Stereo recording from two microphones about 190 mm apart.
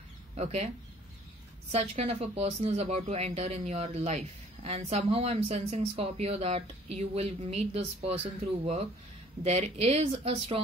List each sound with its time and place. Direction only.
0.4 s speech: 35° right (ahead or behind)
1.7 s speech: 35° right (ahead or behind)
9.4 s speech: 35° right (ahead or behind)